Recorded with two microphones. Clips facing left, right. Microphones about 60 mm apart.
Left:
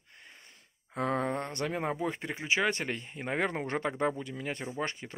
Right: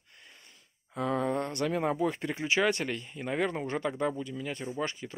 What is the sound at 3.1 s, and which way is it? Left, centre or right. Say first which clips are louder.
Speech: even; left.